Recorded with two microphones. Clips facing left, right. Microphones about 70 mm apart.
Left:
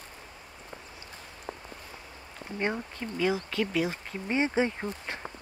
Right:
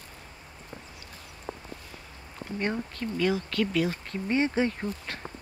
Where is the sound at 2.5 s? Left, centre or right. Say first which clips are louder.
Right 1 dB; centre.